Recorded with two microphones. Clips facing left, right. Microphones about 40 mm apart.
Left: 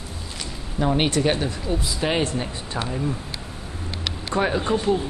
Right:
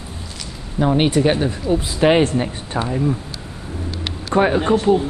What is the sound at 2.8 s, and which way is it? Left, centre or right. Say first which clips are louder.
Speech: right 6 dB; centre.